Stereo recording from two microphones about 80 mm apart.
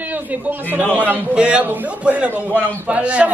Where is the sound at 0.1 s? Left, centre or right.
Right.